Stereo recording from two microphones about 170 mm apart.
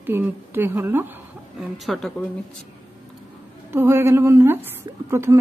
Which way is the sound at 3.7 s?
15° right (ahead or behind).